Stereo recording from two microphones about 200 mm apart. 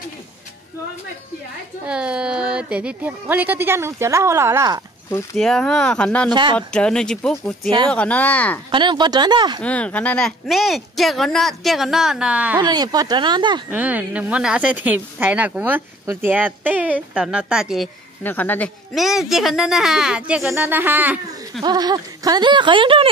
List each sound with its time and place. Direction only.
1.9 s speech: 5° right (ahead or behind)
5.3 s a woman's voice: 5° left (ahead or behind)
6.3 s speech: 20° right (ahead or behind)
6.7 s a woman's voice: 5° left (ahead or behind)
8.7 s speech: 20° right (ahead or behind)
9.6 s a woman's voice: 5° left (ahead or behind)
12.5 s speech: 20° right (ahead or behind)
13.7 s speech: 10° right (ahead or behind)
18.2 s a woman's voice: 10° left (ahead or behind); by 21.6 s 10° right (ahead or behind)
21.6 s speech: 20° right (ahead or behind)